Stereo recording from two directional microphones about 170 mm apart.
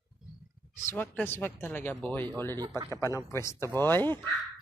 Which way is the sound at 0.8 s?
10° left (ahead or behind).